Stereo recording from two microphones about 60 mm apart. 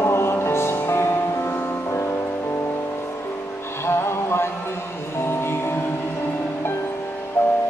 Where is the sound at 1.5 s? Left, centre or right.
Left.